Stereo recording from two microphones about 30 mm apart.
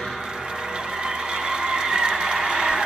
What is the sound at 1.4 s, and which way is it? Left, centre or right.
Neigh, right.